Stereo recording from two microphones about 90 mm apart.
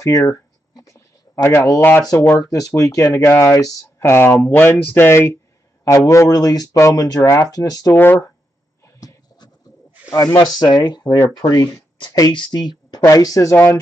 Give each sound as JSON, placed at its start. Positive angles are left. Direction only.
{"t": 0.0, "sound": "a sound", "side_deg": 35}
{"t": 2.5, "sound": "speech", "side_deg": 40}
{"t": 5.9, "sound": "speech", "side_deg": 35}
{"t": 7.2, "sound": "speech", "side_deg": 35}
{"t": 7.9, "sound": "speech", "side_deg": 25}
{"t": 9.0, "sound": "a sound", "side_deg": 45}
{"t": 9.4, "sound": "bird", "side_deg": 50}
{"t": 10.1, "sound": "speech", "side_deg": 50}
{"t": 13.0, "sound": "speech", "side_deg": 40}